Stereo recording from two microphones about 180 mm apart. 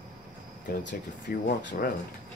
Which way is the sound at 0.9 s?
50° left (ahead or behind).